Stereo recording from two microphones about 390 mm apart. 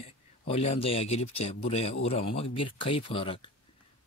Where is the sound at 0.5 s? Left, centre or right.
Centre.